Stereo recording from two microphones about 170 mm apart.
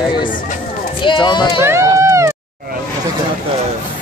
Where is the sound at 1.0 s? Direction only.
30° left (ahead or behind).